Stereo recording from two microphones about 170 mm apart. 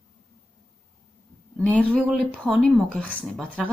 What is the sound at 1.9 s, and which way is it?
Speech, centre (ahead or behind).